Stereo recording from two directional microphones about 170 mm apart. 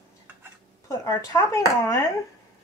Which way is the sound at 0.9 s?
20° left (ahead or behind).